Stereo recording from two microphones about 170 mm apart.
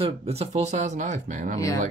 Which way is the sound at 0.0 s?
35° right (ahead or behind).